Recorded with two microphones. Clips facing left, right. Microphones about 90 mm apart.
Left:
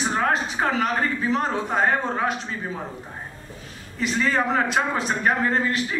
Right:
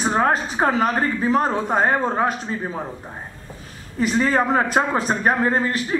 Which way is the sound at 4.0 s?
35° right (ahead or behind).